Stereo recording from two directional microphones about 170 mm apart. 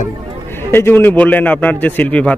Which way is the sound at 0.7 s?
15° left (ahead or behind).